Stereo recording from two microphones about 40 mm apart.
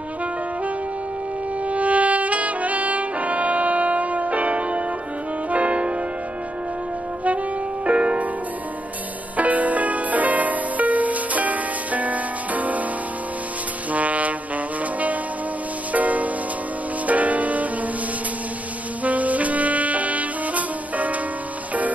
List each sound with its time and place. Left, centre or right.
1.7 s saxophone: right
5.5 s music: right
7.8 s music: right
9.4 s music: right
13.9 s music: right
15.9 s music: right
19.0 s saxophone: right